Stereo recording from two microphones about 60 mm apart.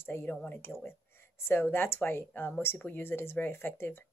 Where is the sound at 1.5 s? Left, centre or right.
Left.